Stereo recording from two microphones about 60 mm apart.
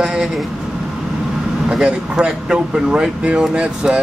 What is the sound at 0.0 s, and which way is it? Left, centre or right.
Vehicle, centre.